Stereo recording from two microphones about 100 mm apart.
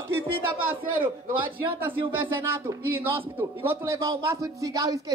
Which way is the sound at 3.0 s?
20° right (ahead or behind).